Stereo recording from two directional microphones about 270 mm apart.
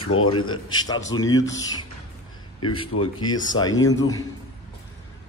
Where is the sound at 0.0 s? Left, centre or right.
Left.